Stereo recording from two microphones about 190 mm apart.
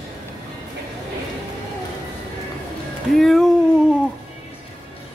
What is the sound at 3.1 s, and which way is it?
Speech, centre (ahead or behind).